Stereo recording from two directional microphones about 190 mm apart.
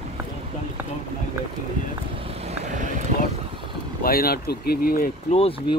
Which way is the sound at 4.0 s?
50° left (ahead or behind).